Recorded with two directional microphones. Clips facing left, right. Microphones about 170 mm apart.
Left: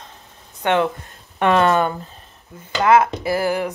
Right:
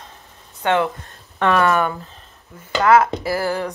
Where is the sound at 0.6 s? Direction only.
20° left (ahead or behind).